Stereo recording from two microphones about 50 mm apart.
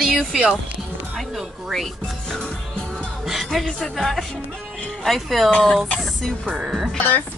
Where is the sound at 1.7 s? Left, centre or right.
Centre.